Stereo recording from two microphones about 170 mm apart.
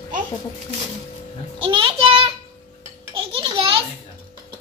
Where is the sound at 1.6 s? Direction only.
30° right (ahead or behind).